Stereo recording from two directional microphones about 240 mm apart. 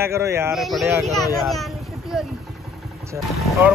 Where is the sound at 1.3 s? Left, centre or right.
Centre.